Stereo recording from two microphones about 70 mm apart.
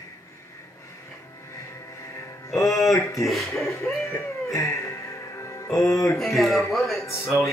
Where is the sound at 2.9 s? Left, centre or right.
Left.